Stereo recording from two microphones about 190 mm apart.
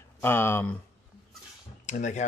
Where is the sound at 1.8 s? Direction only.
40° left (ahead or behind).